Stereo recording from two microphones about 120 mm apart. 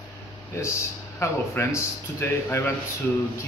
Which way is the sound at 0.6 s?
25° left (ahead or behind).